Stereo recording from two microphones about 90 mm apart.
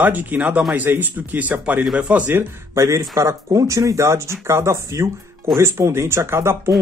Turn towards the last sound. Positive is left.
turn(degrees=-30)  # may be behind; listen again after turning